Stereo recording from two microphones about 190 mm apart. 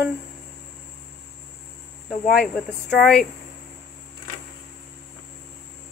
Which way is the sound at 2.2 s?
55° left (ahead or behind).